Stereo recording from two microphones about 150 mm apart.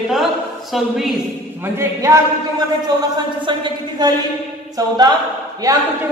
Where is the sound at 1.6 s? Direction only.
20° right (ahead or behind).